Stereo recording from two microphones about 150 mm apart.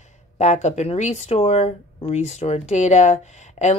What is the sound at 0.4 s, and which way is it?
Speech, 50° left (ahead or behind).